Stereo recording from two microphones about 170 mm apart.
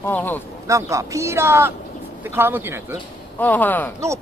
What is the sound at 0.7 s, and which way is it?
Speech, 20° right (ahead or behind).